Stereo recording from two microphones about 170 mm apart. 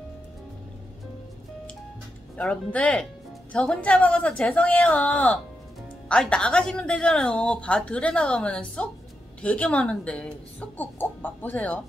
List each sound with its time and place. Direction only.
2.3 s speech: 5° left (ahead or behind)